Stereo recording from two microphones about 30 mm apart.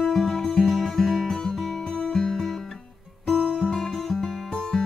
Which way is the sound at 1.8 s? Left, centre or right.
Centre.